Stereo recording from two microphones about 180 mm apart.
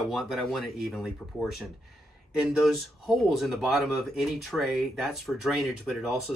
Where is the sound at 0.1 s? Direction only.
Centre (ahead or behind).